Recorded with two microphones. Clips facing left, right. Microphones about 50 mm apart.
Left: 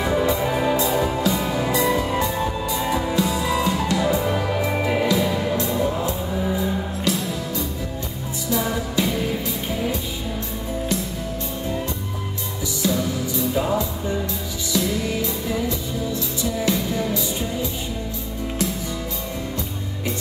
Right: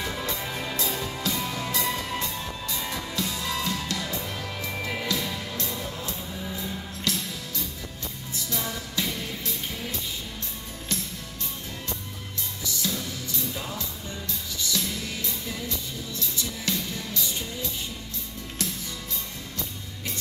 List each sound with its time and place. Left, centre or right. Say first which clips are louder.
0.0 s music: left 11 dB; centre
3.0 s music: left 10 dB; left
3.3 s music: left 8 dB; centre; by 6.5 s left
6.5 s music: left 10 dB; centre
8.6 s music: left 8 dB; centre
12.8 s music: left 11 dB; centre